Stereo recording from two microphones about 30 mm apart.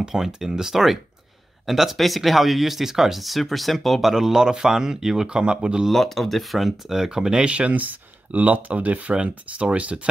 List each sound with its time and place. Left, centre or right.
0.4 s speech: centre
2.0 s speech: centre
3.2 s speech: centre
4.1 s speech: centre
5.3 s speech: right
5.9 s speech: centre
6.9 s speech: centre
7.4 s speech: right
7.7 s speech: right
8.3 s speech: right
9.1 s speech: right